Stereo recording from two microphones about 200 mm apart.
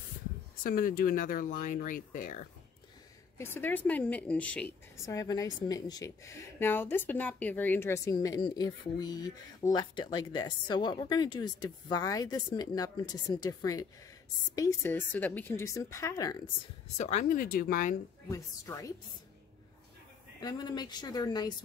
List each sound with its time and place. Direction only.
0.7 s speech: 45° left (ahead or behind)
3.3 s a woman's voice: 10° left (ahead or behind)
16.9 s speech: 35° left (ahead or behind)
18.3 s a woman's voice: 15° left (ahead or behind)
20.3 s a woman's voice: 20° left (ahead or behind)